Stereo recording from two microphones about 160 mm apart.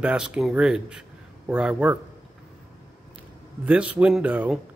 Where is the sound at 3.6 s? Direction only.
10° right (ahead or behind).